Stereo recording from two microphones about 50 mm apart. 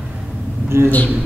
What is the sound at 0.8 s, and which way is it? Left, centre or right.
Speech, left.